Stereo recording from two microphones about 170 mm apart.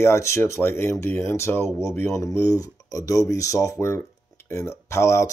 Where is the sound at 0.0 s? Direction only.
15° left (ahead or behind).